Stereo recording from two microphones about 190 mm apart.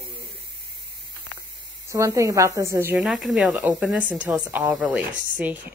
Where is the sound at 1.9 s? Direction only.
15° right (ahead or behind).